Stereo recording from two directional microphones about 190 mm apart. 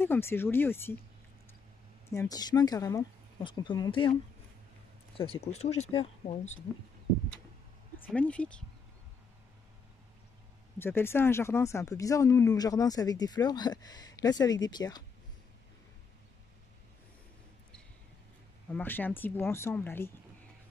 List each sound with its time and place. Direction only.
0.0 s speech: 10° left (ahead or behind)
2.0 s speech: 15° left (ahead or behind)
5.1 s speech: 30° left (ahead or behind)
8.1 s speech: 5° left (ahead or behind)
10.8 s speech: 10° left (ahead or behind)
18.7 s speech: 10° left (ahead or behind)